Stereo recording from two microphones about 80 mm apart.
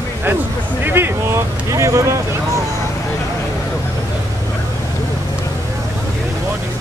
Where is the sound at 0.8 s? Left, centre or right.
Right.